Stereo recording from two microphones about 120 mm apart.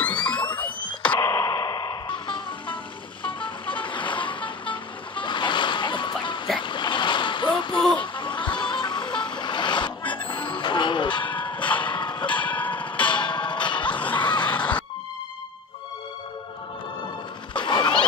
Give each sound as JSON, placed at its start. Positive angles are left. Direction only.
{"t": 0.0, "sound": "music", "side_deg": 10}
{"t": 1.2, "sound": "music", "side_deg": 25}
{"t": 3.3, "sound": "vehicle", "side_deg": 45}
{"t": 6.6, "sound": "splash", "side_deg": 40}
{"t": 7.9, "sound": "music", "side_deg": 40}
{"t": 11.8, "sound": "a sound", "side_deg": 45}
{"t": 12.4, "sound": "tick-tock", "side_deg": 15}
{"t": 13.1, "sound": "music", "side_deg": 40}
{"t": 14.0, "sound": "screaming", "side_deg": 10}
{"t": 14.4, "sound": "music", "side_deg": 10}
{"t": 17.6, "sound": "a sound", "side_deg": 40}